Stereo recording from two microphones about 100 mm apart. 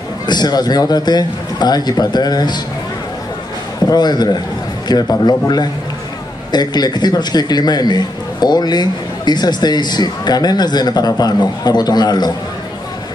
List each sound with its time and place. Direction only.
0.3 s a man's voice: 45° left (ahead or behind)
3.8 s a man's voice: 45° left (ahead or behind)